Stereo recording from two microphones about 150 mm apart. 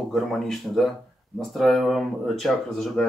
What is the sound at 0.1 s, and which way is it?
Speech, centre (ahead or behind).